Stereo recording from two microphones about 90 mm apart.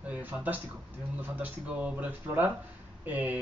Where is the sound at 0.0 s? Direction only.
15° right (ahead or behind).